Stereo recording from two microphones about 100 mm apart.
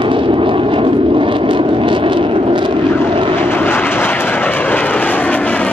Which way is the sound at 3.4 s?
20° left (ahead or behind).